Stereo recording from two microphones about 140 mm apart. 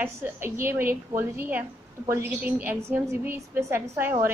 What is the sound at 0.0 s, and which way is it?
A woman's voice, 15° right (ahead or behind).